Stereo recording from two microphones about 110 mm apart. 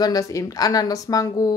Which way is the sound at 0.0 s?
30° left (ahead or behind).